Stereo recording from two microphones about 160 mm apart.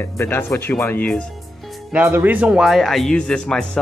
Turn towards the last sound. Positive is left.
turn(degrees=5)  # may be behind; listen again after turning